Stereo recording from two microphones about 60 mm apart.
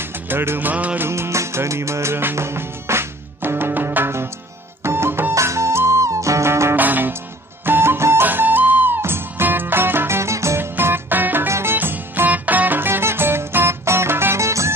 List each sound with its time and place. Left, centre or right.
0.0 s music: right
1.0 s music: right
5.3 s music: right
6.8 s music: right
8.3 s music: right
11.4 s music: right
11.7 s music: right